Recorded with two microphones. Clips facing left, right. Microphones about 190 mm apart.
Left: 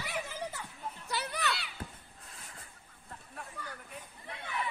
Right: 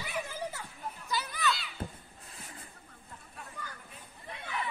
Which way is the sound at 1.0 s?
70° left (ahead or behind).